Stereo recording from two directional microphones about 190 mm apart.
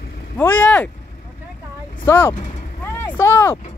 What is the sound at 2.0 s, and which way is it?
A man's voice, 10° left (ahead or behind).